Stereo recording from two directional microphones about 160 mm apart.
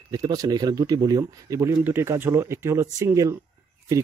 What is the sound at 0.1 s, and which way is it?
Speech, 25° right (ahead or behind).